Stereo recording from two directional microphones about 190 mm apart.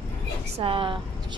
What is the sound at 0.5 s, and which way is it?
Speech, 30° right (ahead or behind).